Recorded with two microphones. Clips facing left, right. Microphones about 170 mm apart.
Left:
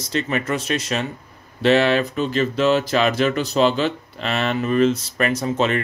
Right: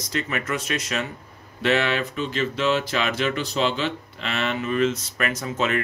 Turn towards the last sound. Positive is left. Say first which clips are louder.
# left 5 dB
turn(degrees=30)  # may be behind; listen again after turning